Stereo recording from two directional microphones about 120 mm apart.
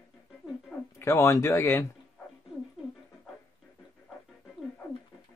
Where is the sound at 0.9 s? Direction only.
20° left (ahead or behind).